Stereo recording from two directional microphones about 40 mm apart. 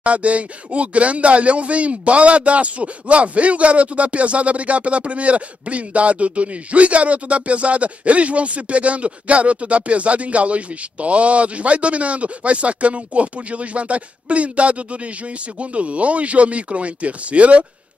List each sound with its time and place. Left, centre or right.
0.0 s speech: right